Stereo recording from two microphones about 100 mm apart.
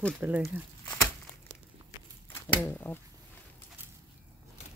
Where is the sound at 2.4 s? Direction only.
20° left (ahead or behind).